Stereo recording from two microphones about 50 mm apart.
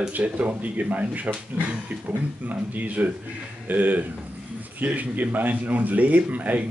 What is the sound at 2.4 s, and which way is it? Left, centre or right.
Speech, right.